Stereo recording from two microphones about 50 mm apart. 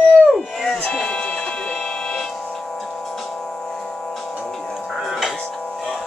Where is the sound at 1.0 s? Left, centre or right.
Centre.